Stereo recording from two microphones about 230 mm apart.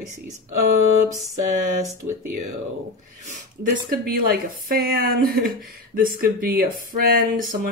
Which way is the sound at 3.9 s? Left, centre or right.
Right.